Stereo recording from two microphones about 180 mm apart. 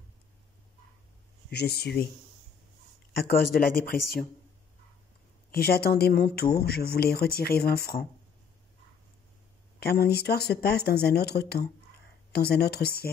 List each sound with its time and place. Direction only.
1.5 s speech: 65° left (ahead or behind)
3.3 s speech: 55° left (ahead or behind)
5.5 s speech: 60° left (ahead or behind)
9.8 s speech: 60° left (ahead or behind)